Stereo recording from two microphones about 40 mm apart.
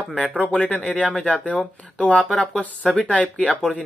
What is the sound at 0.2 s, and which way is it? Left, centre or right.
Speech, centre.